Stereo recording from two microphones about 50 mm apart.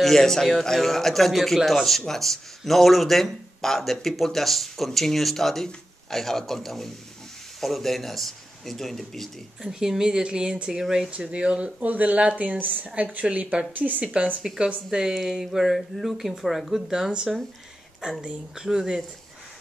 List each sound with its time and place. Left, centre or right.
0.0 s a man's voice: centre
9.6 s speech: centre
11.1 s a woman's voice: right
11.8 s a woman's voice: right; by 15.1 s centre
15.4 s speech: centre
16.9 s speech: centre